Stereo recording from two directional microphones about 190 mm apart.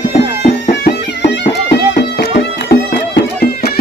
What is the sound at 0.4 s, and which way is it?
Music, 50° left (ahead or behind).